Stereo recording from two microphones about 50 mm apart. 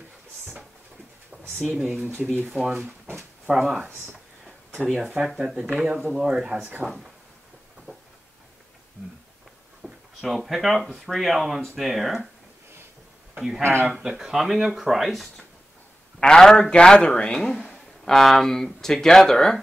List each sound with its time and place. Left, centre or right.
1.6 s speech: centre
3.9 s a sound: right
4.9 s speech: centre
5.9 s speech: centre
9.8 s speech: centre
13.6 s speech: right
13.9 s speech: centre
16.2 s a man's voice: centre